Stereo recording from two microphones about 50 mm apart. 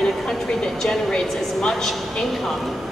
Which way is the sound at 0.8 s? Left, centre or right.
Centre.